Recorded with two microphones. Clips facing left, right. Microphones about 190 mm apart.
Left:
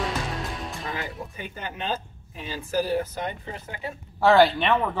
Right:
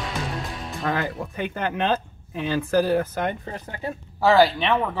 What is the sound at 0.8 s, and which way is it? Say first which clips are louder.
Speech: right 11 dB; 70° right (ahead or behind).